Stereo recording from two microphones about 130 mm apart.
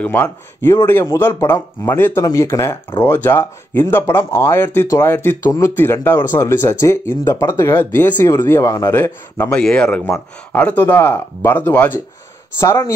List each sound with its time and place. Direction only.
0.0 s speech: 10° left (ahead or behind)